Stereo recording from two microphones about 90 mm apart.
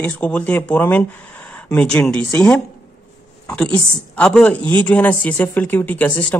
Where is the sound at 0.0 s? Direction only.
20° left (ahead or behind).